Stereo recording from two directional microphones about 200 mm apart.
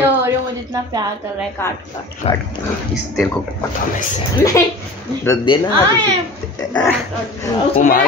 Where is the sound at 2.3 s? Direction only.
30° left (ahead or behind).